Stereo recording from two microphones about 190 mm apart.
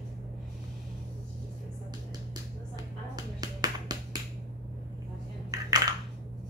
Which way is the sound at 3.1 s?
20° right (ahead or behind).